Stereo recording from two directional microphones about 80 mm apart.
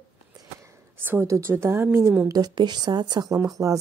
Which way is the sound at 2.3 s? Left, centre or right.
Right.